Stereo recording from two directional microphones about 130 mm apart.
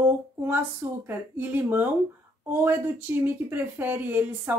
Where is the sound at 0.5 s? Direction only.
15° right (ahead or behind).